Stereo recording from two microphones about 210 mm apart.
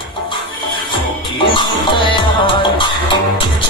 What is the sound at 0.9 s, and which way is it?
Music, 25° left (ahead or behind).